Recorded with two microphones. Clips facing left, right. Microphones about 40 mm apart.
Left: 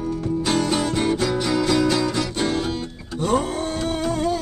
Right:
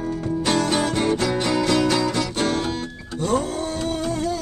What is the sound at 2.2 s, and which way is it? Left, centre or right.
Music, right.